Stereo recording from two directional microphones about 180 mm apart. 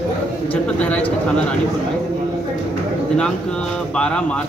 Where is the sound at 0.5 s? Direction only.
5° left (ahead or behind).